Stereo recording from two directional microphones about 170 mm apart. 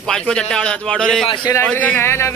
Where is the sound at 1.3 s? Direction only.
25° left (ahead or behind).